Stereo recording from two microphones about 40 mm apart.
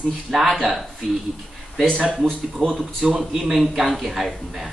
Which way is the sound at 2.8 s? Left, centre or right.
Centre.